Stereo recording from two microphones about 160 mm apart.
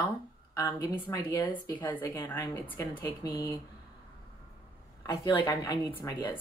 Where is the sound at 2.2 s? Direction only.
25° left (ahead or behind).